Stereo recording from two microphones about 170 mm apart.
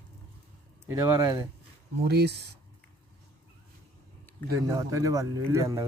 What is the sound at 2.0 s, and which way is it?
Speech, 75° right (ahead or behind).